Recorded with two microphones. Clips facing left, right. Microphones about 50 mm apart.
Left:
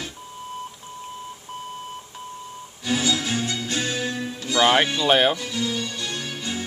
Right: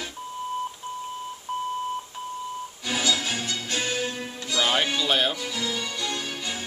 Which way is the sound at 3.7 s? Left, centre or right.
Centre.